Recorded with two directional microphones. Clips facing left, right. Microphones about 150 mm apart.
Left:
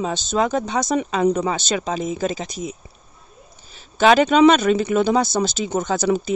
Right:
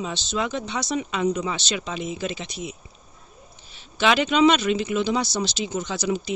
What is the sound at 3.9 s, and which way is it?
Speech, 45° left (ahead or behind).